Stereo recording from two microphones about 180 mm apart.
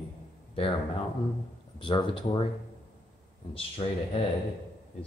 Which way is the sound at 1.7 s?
25° left (ahead or behind).